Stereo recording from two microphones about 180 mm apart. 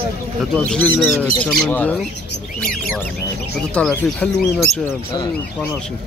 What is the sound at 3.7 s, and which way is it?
Speech, 5° left (ahead or behind).